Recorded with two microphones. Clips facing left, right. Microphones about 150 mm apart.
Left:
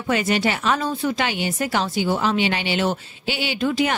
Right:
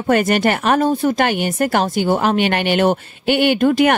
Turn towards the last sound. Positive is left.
turn(degrees=-55)  # may be behind; listen again after turning